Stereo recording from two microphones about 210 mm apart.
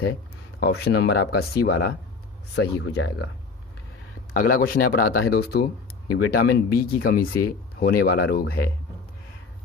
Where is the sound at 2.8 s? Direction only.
90° left.